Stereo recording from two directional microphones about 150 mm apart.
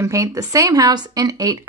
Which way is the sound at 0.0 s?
20° right (ahead or behind).